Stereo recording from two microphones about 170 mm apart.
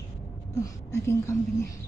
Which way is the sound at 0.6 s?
20° left (ahead or behind).